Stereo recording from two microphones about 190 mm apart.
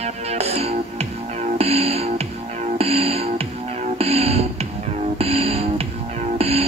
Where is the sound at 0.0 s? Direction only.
35° right (ahead or behind).